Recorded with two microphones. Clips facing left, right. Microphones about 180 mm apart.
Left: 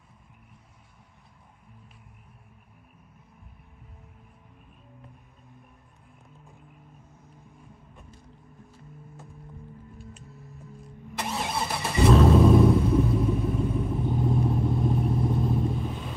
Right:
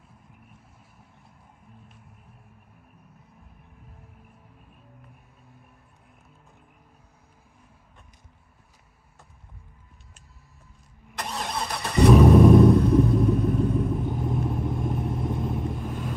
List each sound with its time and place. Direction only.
11.1 s vehicle: 5° left (ahead or behind)
12.1 s vehicle: 10° right (ahead or behind)
12.5 s rumble: 5° left (ahead or behind)
14.6 s vehicle: 20° right (ahead or behind)
15.8 s vehicle: 5° right (ahead or behind)